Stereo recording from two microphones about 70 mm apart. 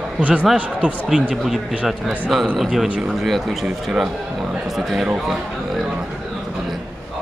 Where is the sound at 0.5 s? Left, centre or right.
Centre.